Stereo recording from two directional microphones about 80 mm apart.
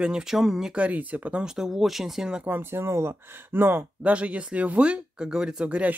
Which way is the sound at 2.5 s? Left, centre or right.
Right.